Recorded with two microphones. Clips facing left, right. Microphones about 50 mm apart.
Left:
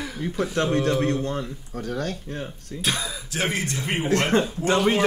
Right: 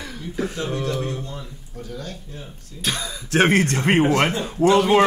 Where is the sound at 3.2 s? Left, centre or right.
Right.